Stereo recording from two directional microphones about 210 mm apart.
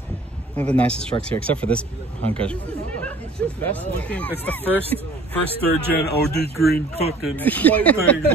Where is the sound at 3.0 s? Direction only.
5° left (ahead or behind).